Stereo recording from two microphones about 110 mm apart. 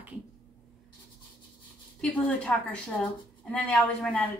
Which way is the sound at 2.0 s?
10° left (ahead or behind).